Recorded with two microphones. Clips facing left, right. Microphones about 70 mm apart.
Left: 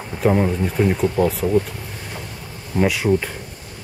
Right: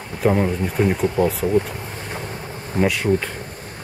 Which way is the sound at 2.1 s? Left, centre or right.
Right.